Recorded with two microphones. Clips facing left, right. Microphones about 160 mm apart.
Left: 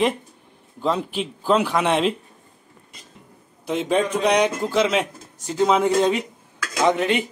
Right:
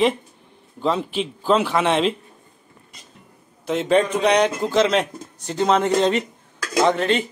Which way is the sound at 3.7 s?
10° left (ahead or behind).